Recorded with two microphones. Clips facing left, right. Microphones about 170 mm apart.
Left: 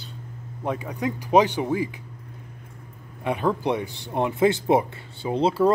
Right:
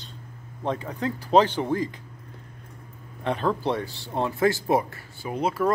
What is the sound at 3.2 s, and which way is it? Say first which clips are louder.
Speech: left 1 dB; 10° left (ahead or behind).